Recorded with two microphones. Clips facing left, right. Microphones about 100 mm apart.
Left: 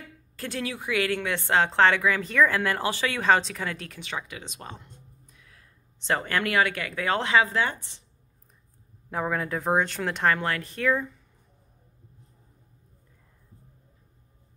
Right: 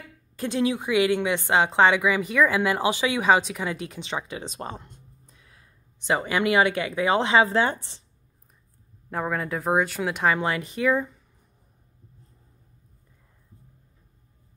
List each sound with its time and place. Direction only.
0.4 s a woman's voice: 20° right (ahead or behind)
6.0 s speech: 10° right (ahead or behind); by 8.0 s 30° right (ahead or behind)
9.1 s a woman's voice: centre (ahead or behind)